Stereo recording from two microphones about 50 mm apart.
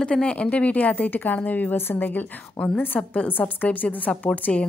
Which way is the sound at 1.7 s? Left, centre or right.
Left.